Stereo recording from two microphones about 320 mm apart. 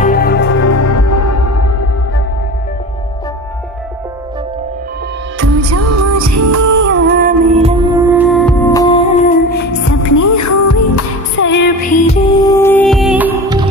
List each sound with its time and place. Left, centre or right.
0.0 s music: left
0.7 s music: left
5.4 s music: right
6.9 s music: right; by 9.7 s left
9.8 s music: left
11.3 s music: left
12.4 s music: centre